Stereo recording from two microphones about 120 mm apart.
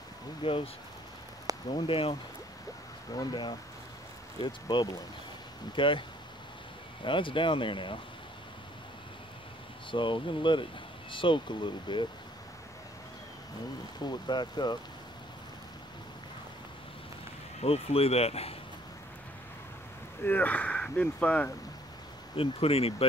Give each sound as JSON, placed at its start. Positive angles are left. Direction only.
{"t": 0.4, "sound": "speech", "side_deg": 50}
{"t": 1.7, "sound": "speech", "side_deg": 50}
{"t": 3.1, "sound": "speech", "side_deg": 40}
{"t": 7.1, "sound": "speech", "side_deg": 45}
{"t": 9.8, "sound": "speech", "side_deg": 45}
{"t": 14.0, "sound": "speech", "side_deg": 35}
{"t": 17.6, "sound": "speech", "side_deg": 55}
{"t": 20.2, "sound": "speech", "side_deg": 15}
{"t": 22.3, "sound": "speech", "side_deg": 50}